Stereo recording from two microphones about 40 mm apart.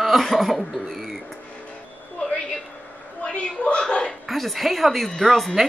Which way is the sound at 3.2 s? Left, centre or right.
Left.